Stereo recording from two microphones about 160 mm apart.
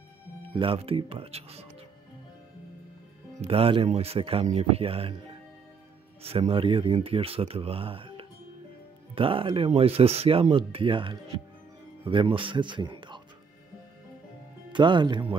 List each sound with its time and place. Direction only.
0.6 s speech: 35° right (ahead or behind)
3.3 s speech: 35° right (ahead or behind)
14.7 s speech: 30° right (ahead or behind)